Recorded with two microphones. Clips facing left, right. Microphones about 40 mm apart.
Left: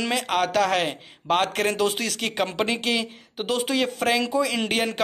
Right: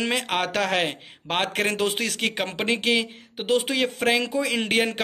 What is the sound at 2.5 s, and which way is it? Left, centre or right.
A man's voice, right.